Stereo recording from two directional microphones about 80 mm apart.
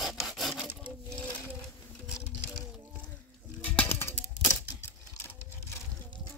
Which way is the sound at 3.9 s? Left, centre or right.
Left.